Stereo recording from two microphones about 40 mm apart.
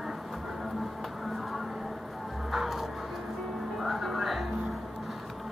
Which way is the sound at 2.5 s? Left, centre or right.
Centre.